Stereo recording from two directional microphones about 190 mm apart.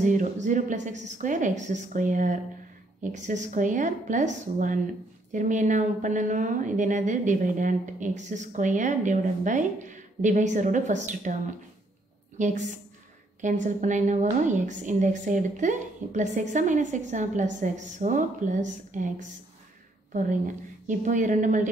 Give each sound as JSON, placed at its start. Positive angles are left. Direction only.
{"t": 0.0, "sound": "a woman's voice", "side_deg": -40}
{"t": 12.4, "sound": "a woman's voice", "side_deg": -40}